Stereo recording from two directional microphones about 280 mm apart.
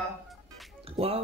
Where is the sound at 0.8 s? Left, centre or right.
Right.